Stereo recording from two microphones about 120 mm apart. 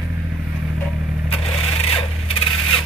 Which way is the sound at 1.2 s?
55° left (ahead or behind).